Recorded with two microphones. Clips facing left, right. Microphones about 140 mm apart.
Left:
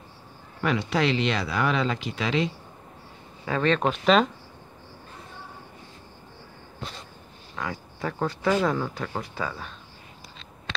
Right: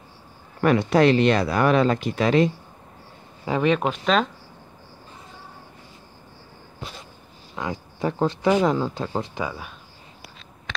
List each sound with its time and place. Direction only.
0.6 s speech: 50° right (ahead or behind)
3.4 s speech: 15° right (ahead or behind)
3.9 s speech: centre (ahead or behind)
7.5 s speech: 20° right (ahead or behind)